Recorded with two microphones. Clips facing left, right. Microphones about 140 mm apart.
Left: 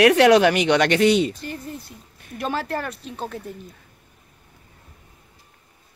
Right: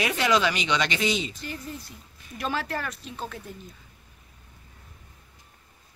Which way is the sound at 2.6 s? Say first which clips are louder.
Left 4 dB; 45° left (ahead or behind).